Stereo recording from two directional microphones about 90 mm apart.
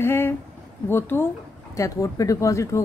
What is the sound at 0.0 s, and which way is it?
Speech, 25° left (ahead or behind).